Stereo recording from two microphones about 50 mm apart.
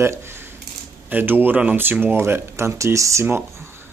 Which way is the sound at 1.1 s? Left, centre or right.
Right.